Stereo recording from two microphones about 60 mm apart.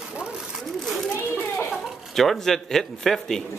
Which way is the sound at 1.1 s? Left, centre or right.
Left.